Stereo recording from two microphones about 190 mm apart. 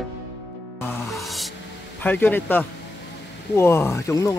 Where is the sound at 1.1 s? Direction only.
Centre (ahead or behind).